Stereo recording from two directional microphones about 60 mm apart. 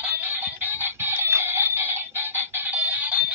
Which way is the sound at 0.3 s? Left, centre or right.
Right.